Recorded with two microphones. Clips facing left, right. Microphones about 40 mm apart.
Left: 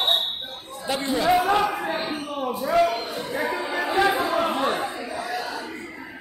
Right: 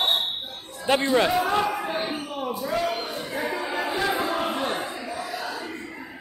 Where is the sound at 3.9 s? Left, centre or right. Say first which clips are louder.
Left 6 dB; left.